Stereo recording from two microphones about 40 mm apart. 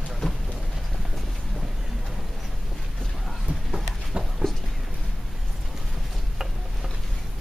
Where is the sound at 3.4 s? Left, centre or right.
Right.